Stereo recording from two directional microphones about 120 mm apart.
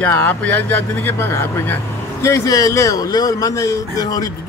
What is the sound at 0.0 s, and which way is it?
Speech, 15° left (ahead or behind).